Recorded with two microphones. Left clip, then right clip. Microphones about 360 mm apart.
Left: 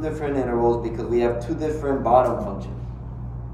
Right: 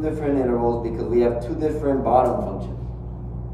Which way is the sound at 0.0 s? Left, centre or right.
Left.